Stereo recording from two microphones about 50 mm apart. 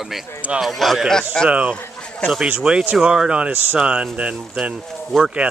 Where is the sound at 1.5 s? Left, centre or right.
Right.